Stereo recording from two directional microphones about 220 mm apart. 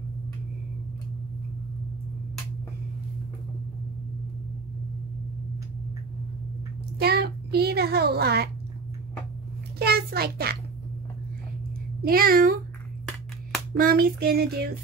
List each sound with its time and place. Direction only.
7.0 s a woman's voice: 45° right (ahead or behind)
9.8 s a sound: 45° right (ahead or behind)
12.0 s a child's voice: 40° right (ahead or behind)
13.7 s clapping: 45° right (ahead or behind)